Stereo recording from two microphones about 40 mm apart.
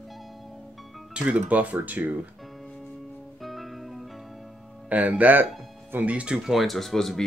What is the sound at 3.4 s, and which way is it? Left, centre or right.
Music, centre.